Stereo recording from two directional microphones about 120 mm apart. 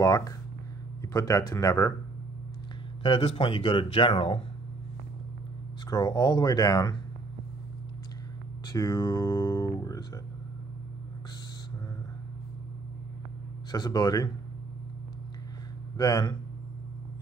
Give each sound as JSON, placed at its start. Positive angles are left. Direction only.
{"t": 0.0, "sound": "speech", "side_deg": 30}
{"t": 3.0, "sound": "speech", "side_deg": 50}
{"t": 5.9, "sound": "speech", "side_deg": 35}
{"t": 8.6, "sound": "speech", "side_deg": 30}
{"t": 13.7, "sound": "speech", "side_deg": 35}
{"t": 16.0, "sound": "speech", "side_deg": 30}